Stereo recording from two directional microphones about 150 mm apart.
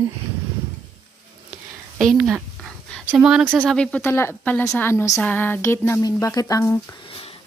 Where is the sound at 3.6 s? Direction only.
5° left (ahead or behind).